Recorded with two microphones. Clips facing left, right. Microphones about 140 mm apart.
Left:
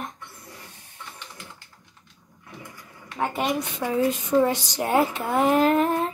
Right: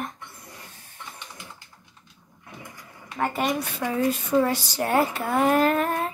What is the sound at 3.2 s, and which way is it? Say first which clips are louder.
Speech: even; 15° left (ahead or behind).